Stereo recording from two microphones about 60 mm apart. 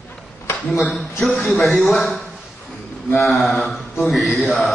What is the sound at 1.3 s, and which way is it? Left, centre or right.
Speech, centre.